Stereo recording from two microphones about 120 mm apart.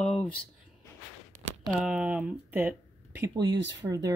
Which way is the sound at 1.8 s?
10° right (ahead or behind).